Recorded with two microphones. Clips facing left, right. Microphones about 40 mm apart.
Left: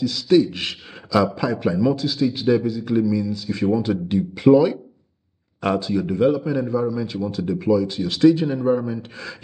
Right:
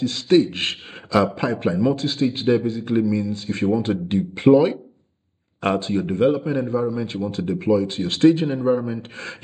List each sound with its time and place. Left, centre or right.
0.0 s a man's voice: right